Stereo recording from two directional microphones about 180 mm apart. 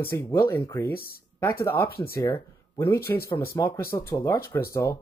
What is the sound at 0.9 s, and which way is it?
Speech, 55° left (ahead or behind).